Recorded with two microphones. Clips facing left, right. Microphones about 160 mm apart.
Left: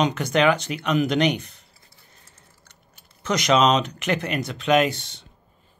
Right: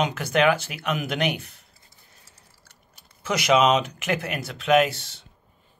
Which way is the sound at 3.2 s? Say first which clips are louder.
Left 1 dB; 5° right (ahead or behind).